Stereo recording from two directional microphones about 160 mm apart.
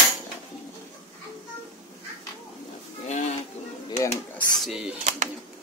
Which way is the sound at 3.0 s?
50° left (ahead or behind).